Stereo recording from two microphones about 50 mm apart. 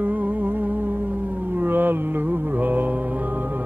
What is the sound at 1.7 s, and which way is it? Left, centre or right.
Mantra, right.